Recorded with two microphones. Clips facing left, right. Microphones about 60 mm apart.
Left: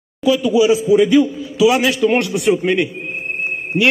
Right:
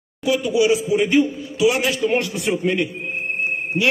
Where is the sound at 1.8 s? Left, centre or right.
Left.